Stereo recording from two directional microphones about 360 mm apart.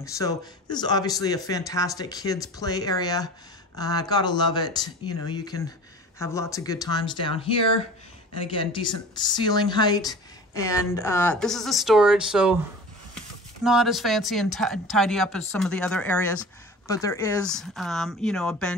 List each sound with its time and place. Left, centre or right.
0.0 s speech: centre
13.7 s speech: centre